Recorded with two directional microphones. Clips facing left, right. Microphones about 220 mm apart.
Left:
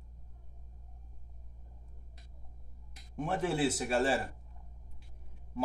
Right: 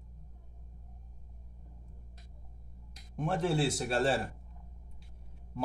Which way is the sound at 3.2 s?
5° left (ahead or behind).